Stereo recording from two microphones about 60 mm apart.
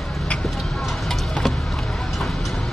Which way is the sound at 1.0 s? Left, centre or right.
Centre.